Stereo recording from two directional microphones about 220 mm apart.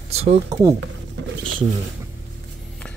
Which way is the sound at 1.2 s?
55° right (ahead or behind).